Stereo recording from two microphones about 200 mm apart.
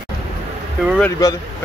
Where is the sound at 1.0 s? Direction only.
15° left (ahead or behind).